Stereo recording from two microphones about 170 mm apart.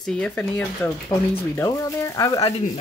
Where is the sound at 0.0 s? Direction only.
5° left (ahead or behind).